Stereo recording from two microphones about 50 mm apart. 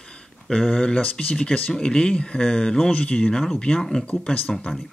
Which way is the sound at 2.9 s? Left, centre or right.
Left.